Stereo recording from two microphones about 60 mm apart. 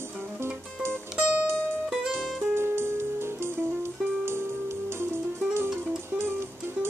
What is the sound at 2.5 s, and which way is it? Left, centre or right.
Music, right.